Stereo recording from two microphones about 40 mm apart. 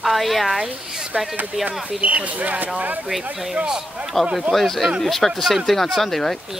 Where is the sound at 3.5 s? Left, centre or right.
Right.